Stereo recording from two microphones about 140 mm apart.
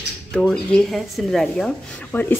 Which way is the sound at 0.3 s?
5° left (ahead or behind).